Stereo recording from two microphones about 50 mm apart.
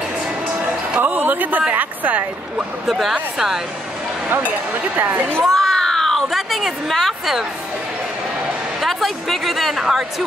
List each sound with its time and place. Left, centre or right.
0.6 s music: right
1.0 s a sound: right
1.7 s a woman's voice: right
2.9 s speech: centre
4.4 s a woman's voice: right
5.5 s a woman's voice: centre
8.8 s speech: centre